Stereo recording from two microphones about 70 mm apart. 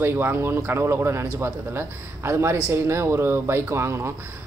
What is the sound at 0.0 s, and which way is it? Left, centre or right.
Speech, right.